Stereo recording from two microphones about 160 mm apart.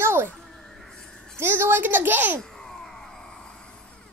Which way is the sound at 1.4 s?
15° right (ahead or behind).